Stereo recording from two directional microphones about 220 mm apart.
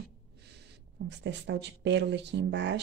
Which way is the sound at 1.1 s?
50° right (ahead or behind).